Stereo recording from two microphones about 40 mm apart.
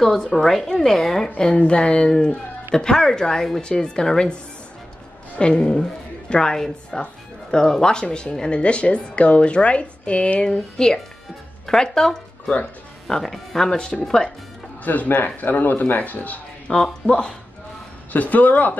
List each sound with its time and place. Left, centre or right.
0.0 s speech: centre
0.3 s speech: centre
1.5 s speech: left
5.4 s a woman's voice: left
10.5 s speech: centre
14.0 s speech: centre
14.9 s speech: left
16.7 s speech: left
18.1 s speech: left